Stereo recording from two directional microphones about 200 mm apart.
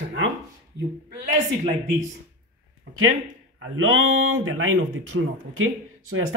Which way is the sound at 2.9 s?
60° right (ahead or behind).